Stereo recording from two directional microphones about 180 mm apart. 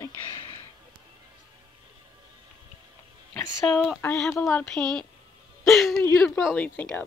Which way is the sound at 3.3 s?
5° left (ahead or behind).